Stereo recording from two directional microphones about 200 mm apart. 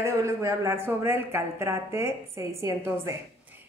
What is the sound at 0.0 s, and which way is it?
A woman's voice, 15° right (ahead or behind).